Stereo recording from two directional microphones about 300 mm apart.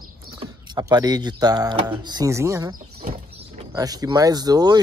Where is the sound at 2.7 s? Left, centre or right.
Right.